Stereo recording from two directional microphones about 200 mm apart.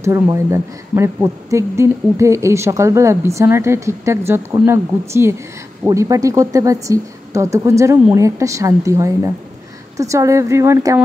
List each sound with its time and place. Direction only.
0.0 s a woman's voice: 15° right (ahead or behind)